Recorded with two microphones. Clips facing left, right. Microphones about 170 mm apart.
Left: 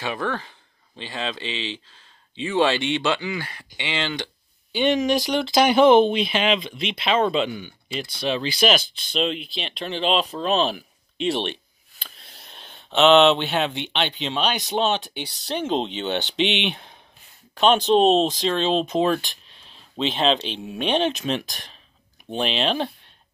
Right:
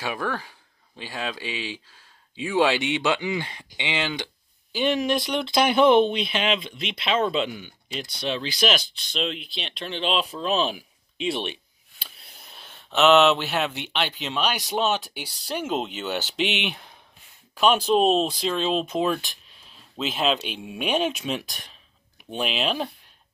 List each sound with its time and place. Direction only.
0.0 s speech: 5° right (ahead or behind)
4.7 s speech: centre (ahead or behind)
12.0 s a sound: 5° right (ahead or behind)
12.6 s a sound: 30° left (ahead or behind)
13.5 s speech: 30° left (ahead or behind)
14.0 s speech: 5° right (ahead or behind)
18.7 s speech: 30° left (ahead or behind)
18.9 s speech: 5° right (ahead or behind)